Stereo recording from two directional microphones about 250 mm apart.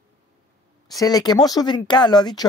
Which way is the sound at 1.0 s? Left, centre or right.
Centre.